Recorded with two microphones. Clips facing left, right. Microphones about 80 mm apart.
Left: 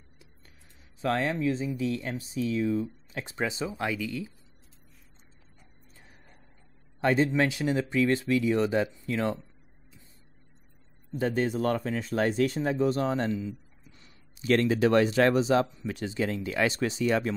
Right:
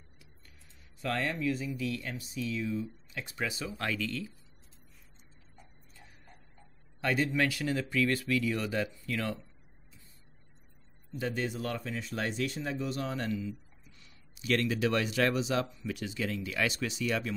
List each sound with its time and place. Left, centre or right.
1.0 s speech: left
5.9 s dog: left
7.0 s speech: left
11.1 s speech: left